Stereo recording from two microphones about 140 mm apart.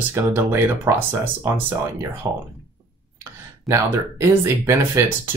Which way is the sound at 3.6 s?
20° right (ahead or behind).